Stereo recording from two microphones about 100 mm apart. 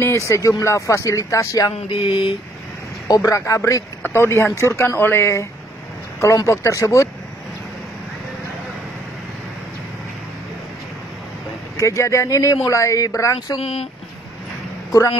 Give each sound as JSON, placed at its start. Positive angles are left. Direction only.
{"t": 0.3, "sound": "speech", "side_deg": 30}
{"t": 1.9, "sound": "a sound", "side_deg": 60}
{"t": 3.1, "sound": "speech", "side_deg": 30}
{"t": 11.8, "sound": "speech", "side_deg": 30}
{"t": 13.6, "sound": "speech", "side_deg": 80}
{"t": 14.9, "sound": "speech", "side_deg": 30}